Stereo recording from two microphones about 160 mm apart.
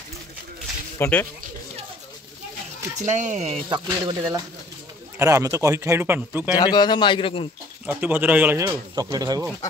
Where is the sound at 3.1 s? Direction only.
50° right (ahead or behind).